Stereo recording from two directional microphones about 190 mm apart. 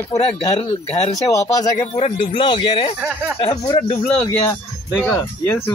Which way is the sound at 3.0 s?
5° right (ahead or behind).